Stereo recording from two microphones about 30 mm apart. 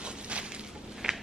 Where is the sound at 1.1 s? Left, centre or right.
Right.